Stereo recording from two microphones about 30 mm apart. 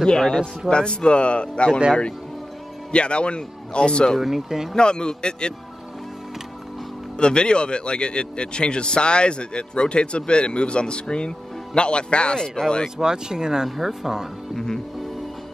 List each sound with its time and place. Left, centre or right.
0.0 s a man's voice: left
2.9 s speech: left
4.2 s speech: centre
4.7 s a man's voice: left
7.2 s speech: left
12.4 s a man's voice: left
12.9 s speech: right
13.7 s speech: centre